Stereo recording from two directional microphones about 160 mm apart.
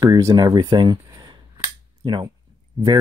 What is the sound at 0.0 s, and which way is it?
Speech, 25° right (ahead or behind).